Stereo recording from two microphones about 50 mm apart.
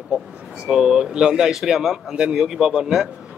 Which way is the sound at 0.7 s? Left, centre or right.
Centre.